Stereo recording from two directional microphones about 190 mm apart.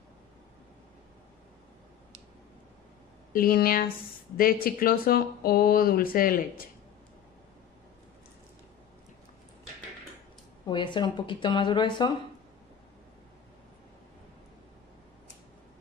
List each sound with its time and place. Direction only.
3.3 s speech: 50° left (ahead or behind)
10.7 s speech: 25° left (ahead or behind)